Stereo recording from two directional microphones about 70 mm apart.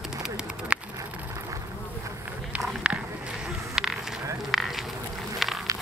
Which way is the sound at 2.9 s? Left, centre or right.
Centre.